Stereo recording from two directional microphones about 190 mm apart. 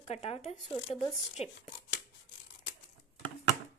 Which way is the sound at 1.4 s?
30° left (ahead or behind).